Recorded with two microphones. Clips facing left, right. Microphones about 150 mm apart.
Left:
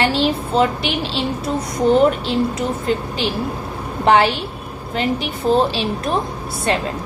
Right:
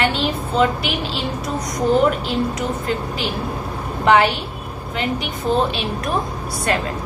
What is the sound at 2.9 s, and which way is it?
A woman's voice, 30° left (ahead or behind).